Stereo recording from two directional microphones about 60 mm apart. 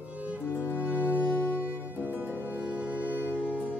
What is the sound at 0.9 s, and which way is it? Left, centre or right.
Music, left.